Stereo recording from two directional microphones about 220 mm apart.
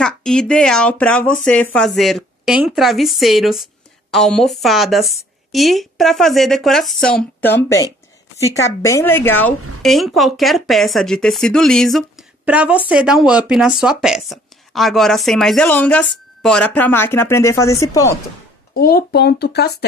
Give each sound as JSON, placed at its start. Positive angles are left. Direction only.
{"t": 0.0, "sound": "speech", "side_deg": 5}
{"t": 18.8, "sound": "speech", "side_deg": 45}